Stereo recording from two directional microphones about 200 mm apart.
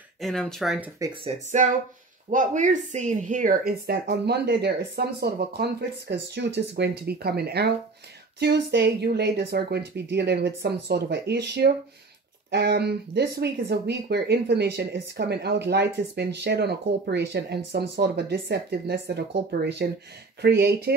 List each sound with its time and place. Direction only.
0.2 s speech: centre (ahead or behind)
1.2 s speech: 35° right (ahead or behind); by 20.9 s 55° right (ahead or behind)